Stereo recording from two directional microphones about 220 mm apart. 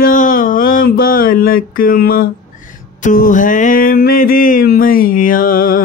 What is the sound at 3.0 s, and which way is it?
Music, 35° left (ahead or behind).